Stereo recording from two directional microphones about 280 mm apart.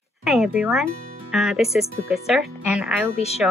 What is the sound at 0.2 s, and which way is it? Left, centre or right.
Speech, centre.